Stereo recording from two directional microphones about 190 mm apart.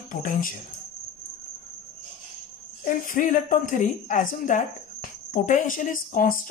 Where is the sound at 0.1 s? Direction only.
45° left (ahead or behind).